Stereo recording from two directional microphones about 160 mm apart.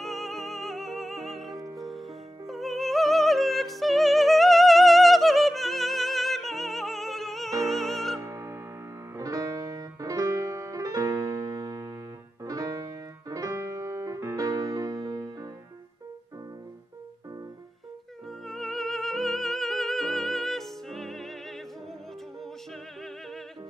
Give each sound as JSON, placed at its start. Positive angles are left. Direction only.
{"t": 0.0, "sound": "music", "side_deg": 0}
{"t": 2.4, "sound": "opera", "side_deg": 0}
{"t": 8.2, "sound": "music", "side_deg": -20}
{"t": 18.5, "sound": "music", "side_deg": 0}